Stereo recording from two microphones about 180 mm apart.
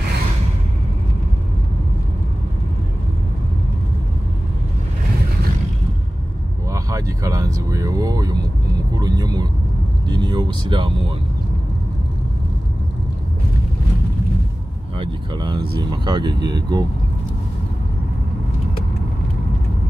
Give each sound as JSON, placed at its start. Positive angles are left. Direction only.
{"t": 6.7, "sound": "vehicle", "side_deg": -20}
{"t": 15.0, "sound": "vehicle", "side_deg": -25}
{"t": 15.8, "sound": "speech", "side_deg": -25}